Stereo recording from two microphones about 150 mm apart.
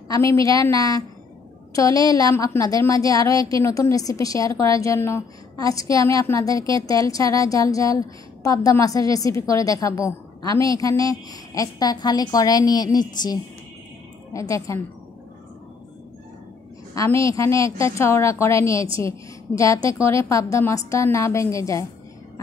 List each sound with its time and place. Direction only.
0.1 s a woman's voice: 20° left (ahead or behind)
14.7 s a woman's voice: 20° left (ahead or behind)
16.9 s a woman's voice: 20° left (ahead or behind)